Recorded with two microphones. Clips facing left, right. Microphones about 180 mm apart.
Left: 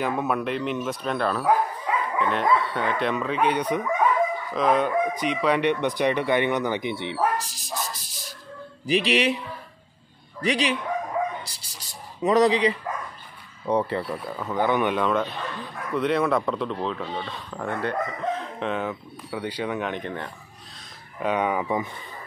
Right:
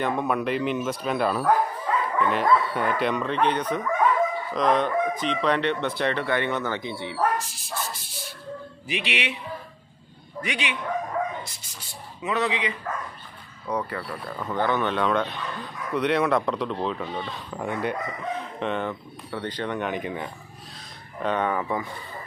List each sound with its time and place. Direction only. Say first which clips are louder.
0.0 s speech: even; 5° left (ahead or behind)
1.4 s speech: even; 10° left (ahead or behind)
7.3 s a sound: left 1 dB; 35° left (ahead or behind)
10.4 s a sound: left 6 dB; 35° left (ahead or behind)
13.7 s speech: left 5 dB; 25° left (ahead or behind)
14.2 s speech: right 2 dB; 10° left (ahead or behind); by 17.9 s 10° right (ahead or behind)
18.6 s speech: even; centre (ahead or behind)
21.2 s speech: left 1 dB; 10° left (ahead or behind)